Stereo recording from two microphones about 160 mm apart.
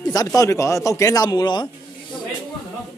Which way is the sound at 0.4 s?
20° left (ahead or behind).